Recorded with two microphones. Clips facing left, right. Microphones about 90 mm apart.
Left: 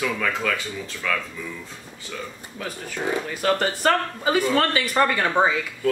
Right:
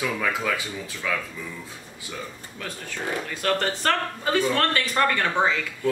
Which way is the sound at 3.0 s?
20° left (ahead or behind).